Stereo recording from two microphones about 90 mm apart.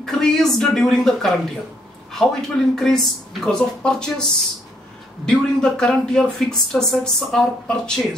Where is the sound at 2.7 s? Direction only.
5° left (ahead or behind).